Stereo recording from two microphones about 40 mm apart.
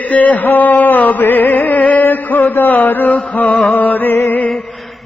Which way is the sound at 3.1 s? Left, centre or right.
Left.